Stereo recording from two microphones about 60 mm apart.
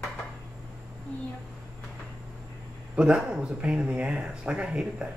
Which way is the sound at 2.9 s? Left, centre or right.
Centre.